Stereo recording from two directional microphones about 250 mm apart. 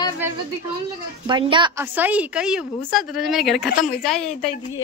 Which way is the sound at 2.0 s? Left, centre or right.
Centre.